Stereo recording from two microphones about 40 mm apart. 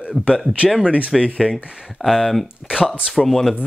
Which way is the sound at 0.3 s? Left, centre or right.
Centre.